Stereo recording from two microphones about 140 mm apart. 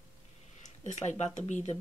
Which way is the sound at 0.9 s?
55° left (ahead or behind).